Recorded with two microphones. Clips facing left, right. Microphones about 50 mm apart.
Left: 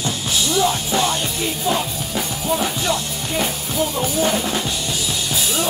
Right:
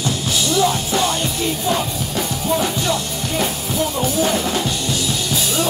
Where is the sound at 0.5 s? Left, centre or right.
Centre.